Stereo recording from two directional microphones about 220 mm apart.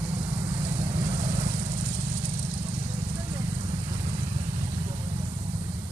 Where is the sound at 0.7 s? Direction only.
15° right (ahead or behind).